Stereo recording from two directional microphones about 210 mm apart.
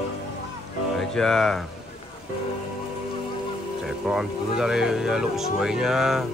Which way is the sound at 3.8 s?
5° right (ahead or behind).